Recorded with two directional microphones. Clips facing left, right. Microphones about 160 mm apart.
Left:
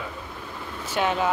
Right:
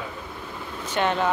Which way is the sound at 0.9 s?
5° left (ahead or behind).